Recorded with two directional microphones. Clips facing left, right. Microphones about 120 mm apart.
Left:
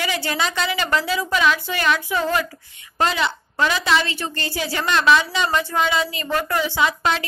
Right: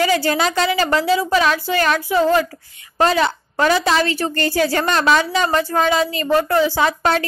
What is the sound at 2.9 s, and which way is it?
A woman's voice, 40° right (ahead or behind).